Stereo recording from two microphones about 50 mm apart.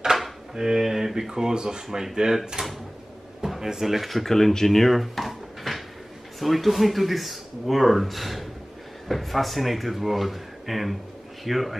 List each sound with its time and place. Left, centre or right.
0.0 s speech: centre